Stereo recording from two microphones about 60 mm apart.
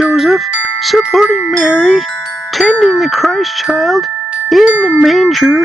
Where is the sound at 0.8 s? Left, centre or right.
Centre.